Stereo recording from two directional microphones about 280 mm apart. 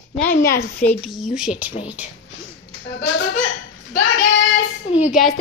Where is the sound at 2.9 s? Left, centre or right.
Left.